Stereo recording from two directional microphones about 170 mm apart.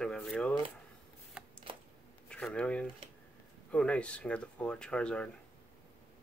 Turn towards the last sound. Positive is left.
turn(degrees=5)  # may be behind; listen again after turning